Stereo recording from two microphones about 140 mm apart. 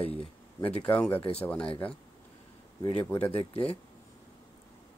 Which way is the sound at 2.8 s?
40° left (ahead or behind).